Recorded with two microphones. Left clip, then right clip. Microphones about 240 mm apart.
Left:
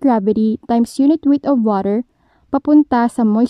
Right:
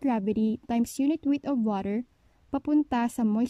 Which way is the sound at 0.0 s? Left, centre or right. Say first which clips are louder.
Left 13 dB; left.